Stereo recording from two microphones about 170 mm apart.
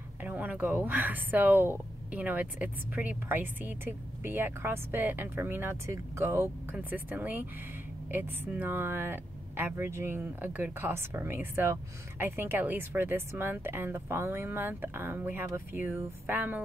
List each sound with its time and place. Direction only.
0.2 s speech: 10° right (ahead or behind)